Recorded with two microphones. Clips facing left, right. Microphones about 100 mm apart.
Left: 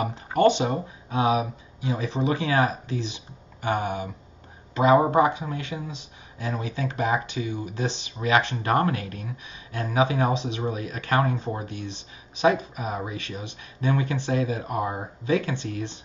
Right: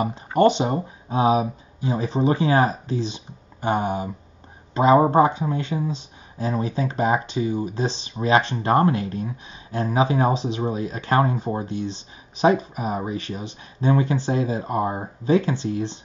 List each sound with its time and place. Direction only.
0.0 s speech: 25° right (ahead or behind)